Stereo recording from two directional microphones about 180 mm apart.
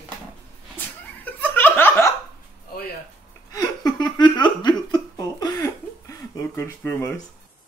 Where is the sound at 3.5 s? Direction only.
20° left (ahead or behind).